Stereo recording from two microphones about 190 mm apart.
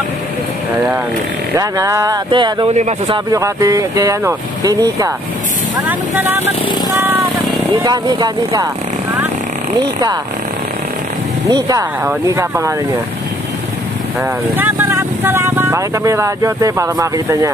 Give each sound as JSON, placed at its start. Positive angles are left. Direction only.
{"t": 1.5, "sound": "speech", "side_deg": -15}
{"t": 2.7, "sound": "speech", "side_deg": -35}
{"t": 3.3, "sound": "speech", "side_deg": -15}
{"t": 7.7, "sound": "speech", "side_deg": -20}
{"t": 11.4, "sound": "speech", "side_deg": -20}
{"t": 14.6, "sound": "speech", "side_deg": -10}